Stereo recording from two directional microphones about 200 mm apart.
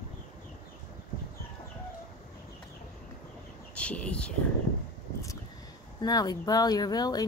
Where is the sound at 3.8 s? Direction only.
5° left (ahead or behind).